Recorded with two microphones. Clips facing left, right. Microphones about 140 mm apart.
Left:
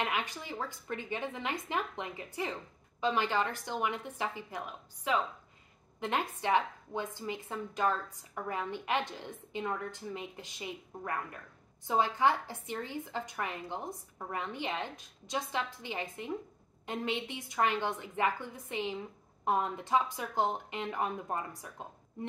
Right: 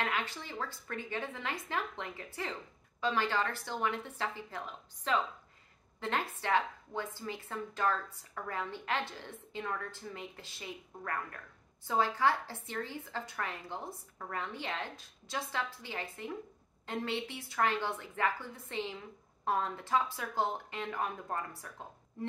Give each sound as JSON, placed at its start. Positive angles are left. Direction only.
{"t": 0.0, "sound": "a woman's voice", "side_deg": 15}